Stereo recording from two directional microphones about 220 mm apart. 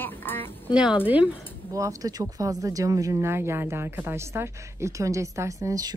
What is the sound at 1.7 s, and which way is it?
Speech, 15° right (ahead or behind).